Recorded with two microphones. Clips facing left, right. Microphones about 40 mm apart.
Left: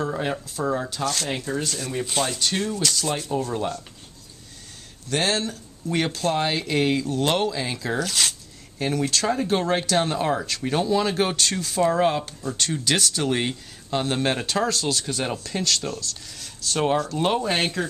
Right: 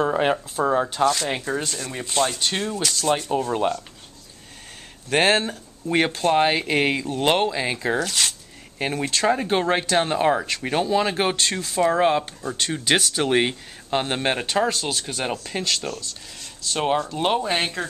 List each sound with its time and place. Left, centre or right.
0.0 s speech: right
1.0 s speech: centre
1.3 s speech: right
1.7 s speech: centre
2.3 s speech: centre
3.3 s speech: right
5.1 s speech: right
8.0 s speech: centre
8.7 s speech: right; by 17.8 s centre